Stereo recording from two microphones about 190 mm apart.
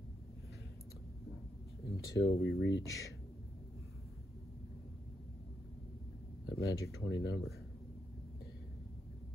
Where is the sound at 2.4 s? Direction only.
85° left.